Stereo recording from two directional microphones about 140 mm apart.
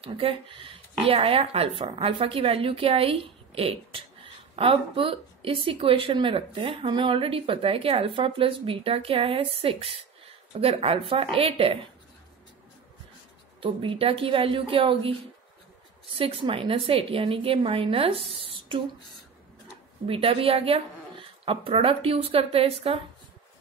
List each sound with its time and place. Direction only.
0.0 s speech: 40° right (ahead or behind)
13.6 s speech: 40° right (ahead or behind)
20.1 s speech: 40° right (ahead or behind)